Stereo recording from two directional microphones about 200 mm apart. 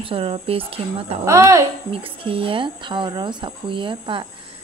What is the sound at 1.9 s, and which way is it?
Speech, 25° right (ahead or behind).